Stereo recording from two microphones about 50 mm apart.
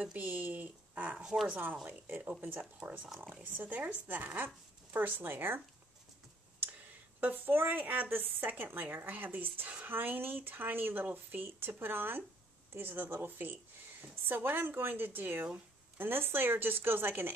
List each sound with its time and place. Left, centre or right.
0.0 s a woman's voice: right
1.2 s speech: centre
1.9 s a woman's voice: right
7.2 s a woman's voice: right